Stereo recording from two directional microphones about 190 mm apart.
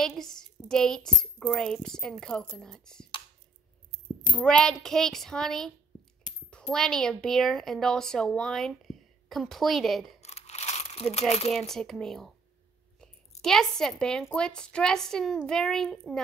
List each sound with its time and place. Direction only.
0.0 s a woman's voice: centre (ahead or behind)
4.4 s a woman's voice: 5° left (ahead or behind)
10.2 s crumpling: 35° left (ahead or behind)
11.5 s a woman's voice: centre (ahead or behind)